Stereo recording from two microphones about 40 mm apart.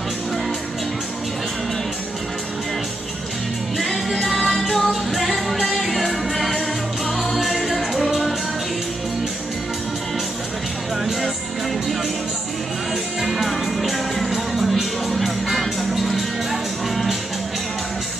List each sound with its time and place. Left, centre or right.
3.7 s music: centre
11.1 s music: centre
13.2 s music: centre